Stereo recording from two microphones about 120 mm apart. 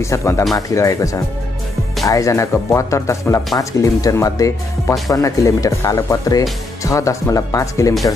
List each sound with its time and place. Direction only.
0.0 s speech: 25° left (ahead or behind)